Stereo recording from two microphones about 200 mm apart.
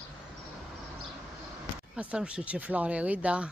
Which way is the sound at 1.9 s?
5° right (ahead or behind).